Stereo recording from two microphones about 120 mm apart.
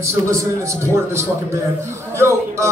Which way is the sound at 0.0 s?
25° right (ahead or behind).